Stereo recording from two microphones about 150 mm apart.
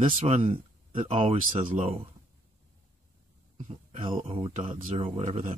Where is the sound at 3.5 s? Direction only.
40° right (ahead or behind).